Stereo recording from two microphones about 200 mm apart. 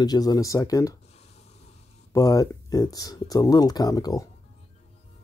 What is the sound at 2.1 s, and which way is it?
Speech, 20° left (ahead or behind).